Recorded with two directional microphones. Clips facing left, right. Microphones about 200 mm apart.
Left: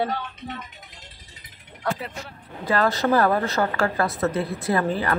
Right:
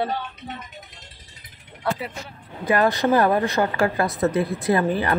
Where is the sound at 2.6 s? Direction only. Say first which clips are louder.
Right 2 dB; 15° right (ahead or behind).